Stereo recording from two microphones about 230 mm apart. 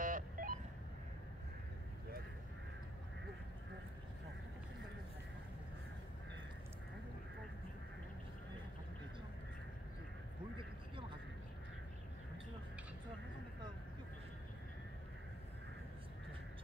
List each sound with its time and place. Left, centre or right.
0.0 s telephone dialing: right